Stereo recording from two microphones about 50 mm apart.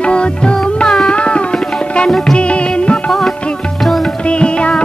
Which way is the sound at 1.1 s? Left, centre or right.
Left.